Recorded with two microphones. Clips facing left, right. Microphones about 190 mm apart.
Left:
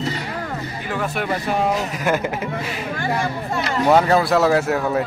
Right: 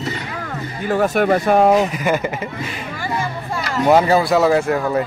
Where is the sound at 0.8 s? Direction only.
45° right (ahead or behind).